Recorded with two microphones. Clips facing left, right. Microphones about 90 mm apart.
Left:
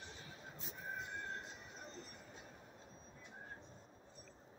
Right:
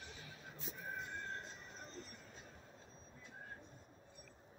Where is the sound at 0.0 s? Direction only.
25° left (ahead or behind).